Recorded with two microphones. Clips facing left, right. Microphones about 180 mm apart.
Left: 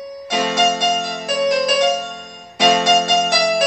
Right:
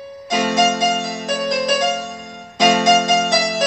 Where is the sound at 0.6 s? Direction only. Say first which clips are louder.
Even; centre (ahead or behind).